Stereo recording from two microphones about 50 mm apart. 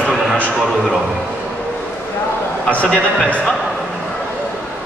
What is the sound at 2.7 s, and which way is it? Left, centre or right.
Speech, left.